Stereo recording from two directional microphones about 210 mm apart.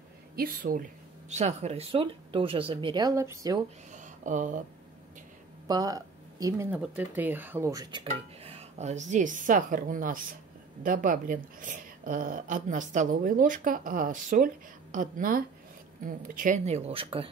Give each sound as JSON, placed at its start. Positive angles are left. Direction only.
{"t": 0.4, "sound": "a woman's voice", "side_deg": -40}
{"t": 1.3, "sound": "speech", "side_deg": -30}
{"t": 3.9, "sound": "a sound", "side_deg": -35}
{"t": 5.7, "sound": "speech", "side_deg": -20}